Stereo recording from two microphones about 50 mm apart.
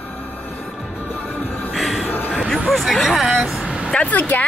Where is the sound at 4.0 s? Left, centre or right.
Left.